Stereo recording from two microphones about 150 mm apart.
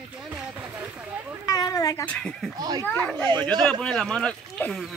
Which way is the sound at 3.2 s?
25° right (ahead or behind).